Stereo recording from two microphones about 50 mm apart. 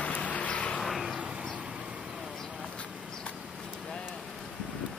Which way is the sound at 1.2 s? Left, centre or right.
Centre.